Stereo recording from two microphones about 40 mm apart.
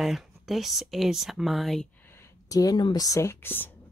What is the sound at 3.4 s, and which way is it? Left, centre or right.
Speech, left.